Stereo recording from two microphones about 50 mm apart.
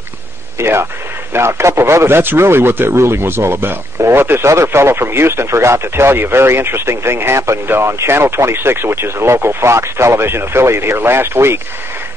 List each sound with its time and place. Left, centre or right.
0.6 s speech: right
4.5 s speech: right
7.6 s speech: right